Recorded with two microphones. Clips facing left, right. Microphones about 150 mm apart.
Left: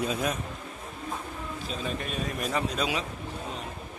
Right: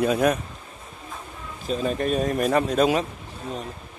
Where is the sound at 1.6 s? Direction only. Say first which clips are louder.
Right 11 dB; 45° right (ahead or behind).